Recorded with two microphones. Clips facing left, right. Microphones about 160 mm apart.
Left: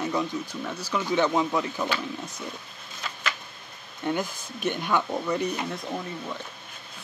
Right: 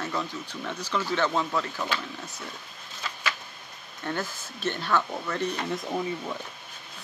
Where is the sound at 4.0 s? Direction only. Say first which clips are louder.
Left 4 dB; 15° left (ahead or behind).